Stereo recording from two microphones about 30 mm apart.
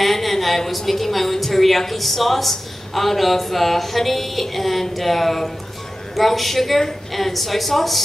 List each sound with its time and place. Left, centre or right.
0.0 s a woman's voice: centre